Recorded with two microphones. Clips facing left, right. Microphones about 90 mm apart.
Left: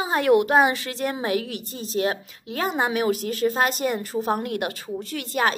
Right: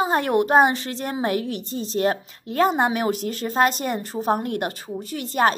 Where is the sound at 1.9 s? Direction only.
45° right (ahead or behind).